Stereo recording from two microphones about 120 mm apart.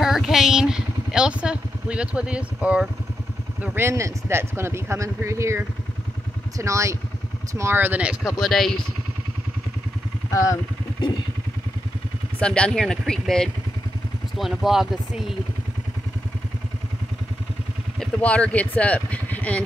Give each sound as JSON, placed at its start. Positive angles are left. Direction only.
{"t": 0.0, "sound": "speech", "side_deg": -5}
{"t": 3.6, "sound": "speech", "side_deg": -20}
{"t": 8.4, "sound": "speech", "side_deg": 0}
{"t": 10.3, "sound": "speech", "side_deg": 30}
{"t": 12.4, "sound": "speech", "side_deg": 10}
{"t": 17.9, "sound": "speech", "side_deg": 10}